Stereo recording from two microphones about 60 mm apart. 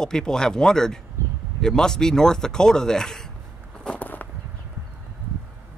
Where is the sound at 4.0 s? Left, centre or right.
Left.